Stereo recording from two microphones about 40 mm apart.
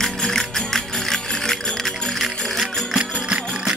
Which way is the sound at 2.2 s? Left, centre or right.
Centre.